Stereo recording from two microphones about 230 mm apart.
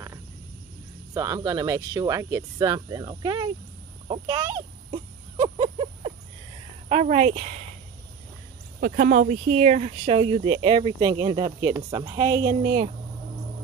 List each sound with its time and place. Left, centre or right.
1.1 s speech: centre
4.1 s a sound: centre
6.9 s a woman's voice: right
8.8 s speech: right; by 12.5 s centre
12.6 s a woman's voice: right